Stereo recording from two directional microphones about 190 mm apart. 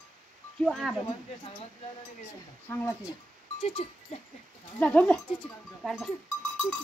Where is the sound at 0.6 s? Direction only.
Centre (ahead or behind).